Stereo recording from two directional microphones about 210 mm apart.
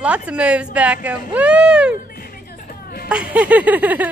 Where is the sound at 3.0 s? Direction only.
5° right (ahead or behind).